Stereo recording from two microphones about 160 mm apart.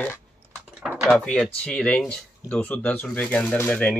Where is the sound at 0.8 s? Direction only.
5° right (ahead or behind).